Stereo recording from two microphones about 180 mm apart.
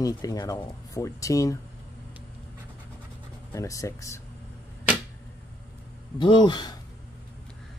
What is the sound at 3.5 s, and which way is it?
Speech, 15° left (ahead or behind).